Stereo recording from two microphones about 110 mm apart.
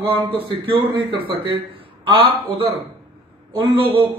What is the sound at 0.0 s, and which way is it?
Speech, 55° right (ahead or behind).